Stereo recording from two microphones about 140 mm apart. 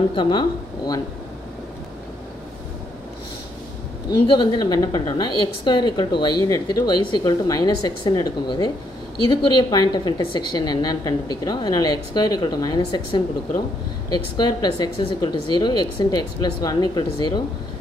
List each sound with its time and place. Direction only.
0.1 s speech: 30° left (ahead or behind)
4.3 s a woman's voice: 30° left (ahead or behind)